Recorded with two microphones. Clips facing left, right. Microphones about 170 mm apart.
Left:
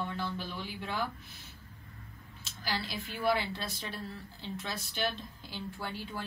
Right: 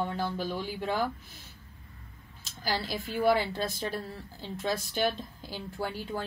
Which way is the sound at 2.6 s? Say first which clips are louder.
Right 5 dB; 45° right (ahead or behind).